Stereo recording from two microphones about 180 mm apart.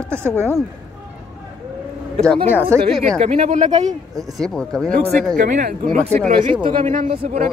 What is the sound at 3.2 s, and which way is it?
Speech, 40° right (ahead or behind).